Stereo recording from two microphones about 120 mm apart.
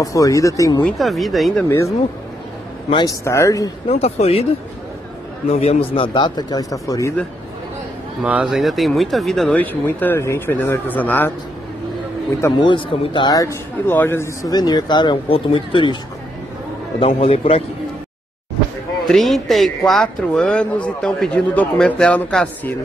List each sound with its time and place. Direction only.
0.0 s a man's voice: 30° left (ahead or behind)
0.9 s speech: centre (ahead or behind)
1.7 s a man's voice: 25° left (ahead or behind)
2.9 s speech: 40° left (ahead or behind)
3.3 s a man's voice: 25° left (ahead or behind)
4.0 s speech: 55° left (ahead or behind)
5.5 s speech: 60° left (ahead or behind); by 7.2 s 25° left (ahead or behind)
8.2 s speech: 5° right (ahead or behind)
9.6 s a man's voice: 15° left (ahead or behind)
12.5 s a man's voice: 45° left (ahead or behind); by 14.5 s 20° left (ahead or behind)
14.5 s speech: 35° left (ahead or behind)
17.0 s speech: 55° left (ahead or behind)
19.0 s a man's voice: centre (ahead or behind)